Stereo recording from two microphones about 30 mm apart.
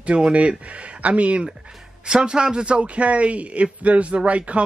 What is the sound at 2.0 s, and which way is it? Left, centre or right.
A man's voice, right.